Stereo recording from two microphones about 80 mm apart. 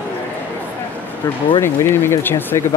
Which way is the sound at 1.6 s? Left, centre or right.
Left.